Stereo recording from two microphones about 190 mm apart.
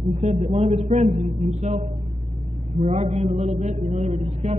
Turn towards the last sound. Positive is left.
turn(degrees=-35)  # may be behind; listen again after turning